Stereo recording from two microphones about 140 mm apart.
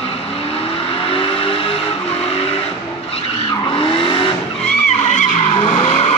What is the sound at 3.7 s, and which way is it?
Vehicle, 40° left (ahead or behind).